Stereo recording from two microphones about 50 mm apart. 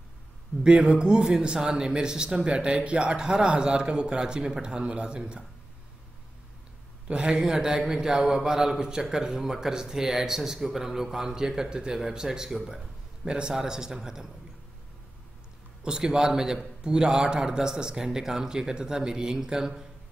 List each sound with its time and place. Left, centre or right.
0.7 s a man's voice: right
7.2 s a man's voice: centre
15.8 s a man's voice: centre